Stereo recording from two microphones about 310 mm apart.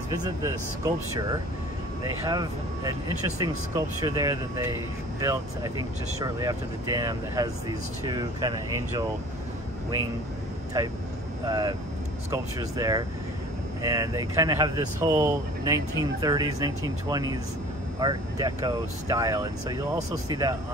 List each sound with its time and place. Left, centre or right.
0.1 s speech: centre
11.4 s speech: centre